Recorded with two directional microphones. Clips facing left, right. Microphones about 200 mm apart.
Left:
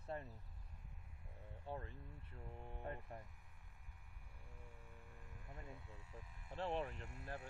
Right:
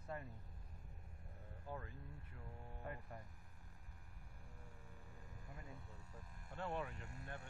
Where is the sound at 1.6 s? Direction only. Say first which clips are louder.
Left 1 dB; 25° left (ahead or behind).